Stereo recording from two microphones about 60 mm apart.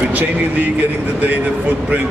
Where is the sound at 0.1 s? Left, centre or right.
Right.